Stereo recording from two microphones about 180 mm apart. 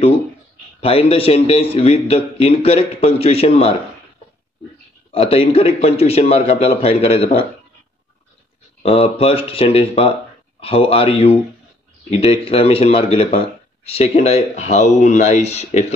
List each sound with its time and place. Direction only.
0.7 s a man's voice: 35° left (ahead or behind)
5.1 s a man's voice: 30° left (ahead or behind)
8.8 s a man's voice: 35° left (ahead or behind)